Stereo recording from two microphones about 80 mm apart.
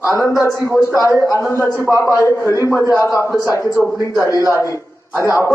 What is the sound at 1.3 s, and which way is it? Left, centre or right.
A man's voice, left.